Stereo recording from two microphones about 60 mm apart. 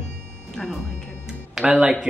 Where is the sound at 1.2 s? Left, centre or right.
Centre.